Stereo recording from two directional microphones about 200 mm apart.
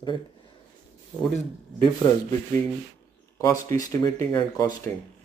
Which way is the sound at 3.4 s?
15° left (ahead or behind).